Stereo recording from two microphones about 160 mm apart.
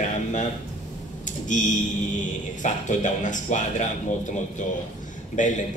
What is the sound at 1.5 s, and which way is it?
A man's voice, 50° left (ahead or behind).